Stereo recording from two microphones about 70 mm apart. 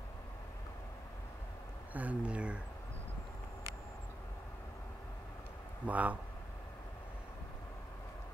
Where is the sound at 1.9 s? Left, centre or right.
Right.